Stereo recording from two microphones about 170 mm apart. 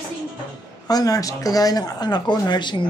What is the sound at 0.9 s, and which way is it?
Speech, 20° left (ahead or behind).